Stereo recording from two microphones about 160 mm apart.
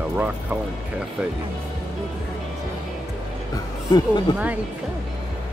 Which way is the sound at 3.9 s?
25° left (ahead or behind).